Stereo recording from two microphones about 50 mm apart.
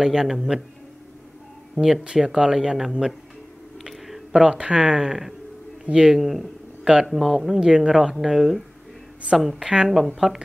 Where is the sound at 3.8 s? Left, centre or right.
Centre.